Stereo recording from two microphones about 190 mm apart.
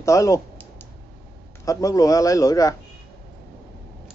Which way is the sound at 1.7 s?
15° left (ahead or behind).